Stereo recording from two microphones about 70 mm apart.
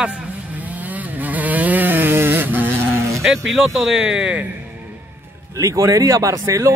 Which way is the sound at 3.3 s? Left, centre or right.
Centre.